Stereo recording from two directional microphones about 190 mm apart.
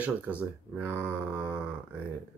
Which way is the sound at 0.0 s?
10° right (ahead or behind).